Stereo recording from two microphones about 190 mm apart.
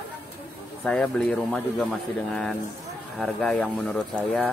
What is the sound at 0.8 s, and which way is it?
Speech, 5° left (ahead or behind).